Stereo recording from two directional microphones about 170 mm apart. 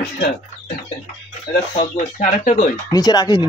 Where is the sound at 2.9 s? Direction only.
25° left (ahead or behind).